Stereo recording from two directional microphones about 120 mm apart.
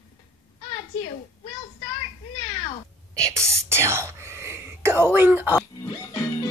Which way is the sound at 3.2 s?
25° right (ahead or behind).